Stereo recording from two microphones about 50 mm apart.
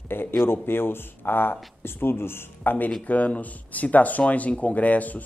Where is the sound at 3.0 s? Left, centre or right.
Left.